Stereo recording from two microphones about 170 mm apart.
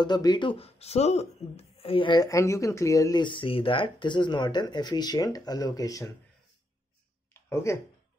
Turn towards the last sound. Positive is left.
turn(degrees=15)  # may be behind; listen again after turning